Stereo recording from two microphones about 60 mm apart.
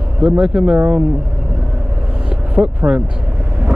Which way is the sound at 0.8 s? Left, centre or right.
Right.